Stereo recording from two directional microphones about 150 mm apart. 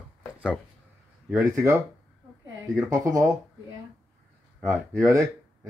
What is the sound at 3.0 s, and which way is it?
Speech, 20° right (ahead or behind).